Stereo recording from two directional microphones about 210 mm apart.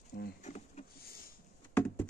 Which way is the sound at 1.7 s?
10° left (ahead or behind).